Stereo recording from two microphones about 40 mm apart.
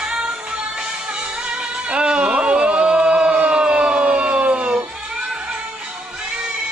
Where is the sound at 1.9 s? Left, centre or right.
Right.